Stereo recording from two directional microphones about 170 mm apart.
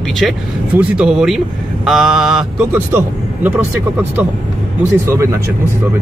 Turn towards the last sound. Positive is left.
turn(degrees=-15)  # may be behind; listen again after turning